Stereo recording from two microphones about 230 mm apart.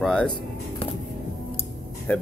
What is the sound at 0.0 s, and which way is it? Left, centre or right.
Music, centre.